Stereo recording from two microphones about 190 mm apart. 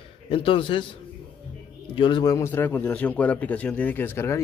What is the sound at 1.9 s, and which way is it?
A man's voice, 25° left (ahead or behind).